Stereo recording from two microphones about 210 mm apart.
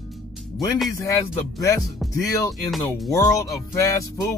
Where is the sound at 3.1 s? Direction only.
15° left (ahead or behind).